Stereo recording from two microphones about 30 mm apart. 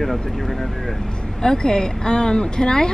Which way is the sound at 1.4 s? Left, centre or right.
Left.